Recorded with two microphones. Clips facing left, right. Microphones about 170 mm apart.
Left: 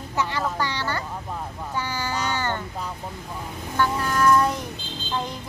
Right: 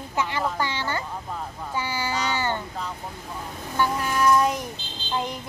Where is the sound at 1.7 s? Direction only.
15° right (ahead or behind).